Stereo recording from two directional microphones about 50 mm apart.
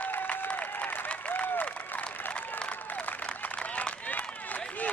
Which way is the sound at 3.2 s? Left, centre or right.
Left.